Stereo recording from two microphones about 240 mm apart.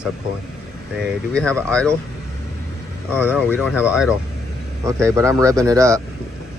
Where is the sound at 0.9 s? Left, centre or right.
Centre.